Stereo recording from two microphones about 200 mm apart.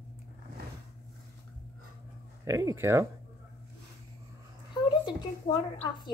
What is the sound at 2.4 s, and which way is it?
Speech, 15° right (ahead or behind).